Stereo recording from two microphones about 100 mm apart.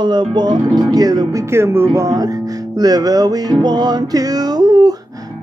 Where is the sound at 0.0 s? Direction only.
50° right (ahead or behind).